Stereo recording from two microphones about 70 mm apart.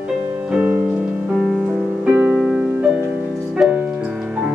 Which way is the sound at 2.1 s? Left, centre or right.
Right.